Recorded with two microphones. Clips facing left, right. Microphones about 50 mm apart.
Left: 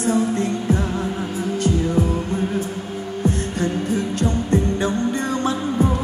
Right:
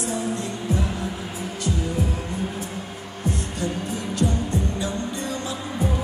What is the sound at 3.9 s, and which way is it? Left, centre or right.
Music, left.